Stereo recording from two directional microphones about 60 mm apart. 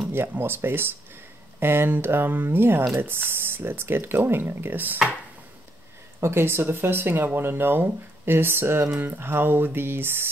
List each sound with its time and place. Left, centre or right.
0.1 s speech: right
6.2 s speech: right